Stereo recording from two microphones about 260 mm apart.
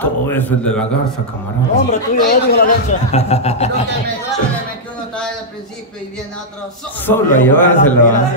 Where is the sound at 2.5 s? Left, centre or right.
Left.